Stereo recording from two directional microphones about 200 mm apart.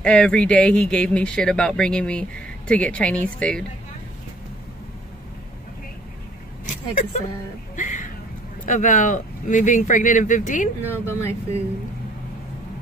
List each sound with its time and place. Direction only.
0.0 s speech: 5° left (ahead or behind)
6.6 s vehicle: 40° left (ahead or behind)
7.7 s a sound: 40° left (ahead or behind)
8.6 s speech: 40° left (ahead or behind)
10.9 s speech: 10° left (ahead or behind)